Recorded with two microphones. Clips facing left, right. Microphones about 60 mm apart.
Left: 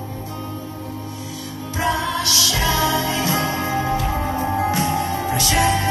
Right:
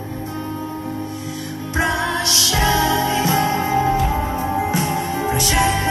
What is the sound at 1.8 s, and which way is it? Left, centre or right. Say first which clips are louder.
Music: right 1 dB; right.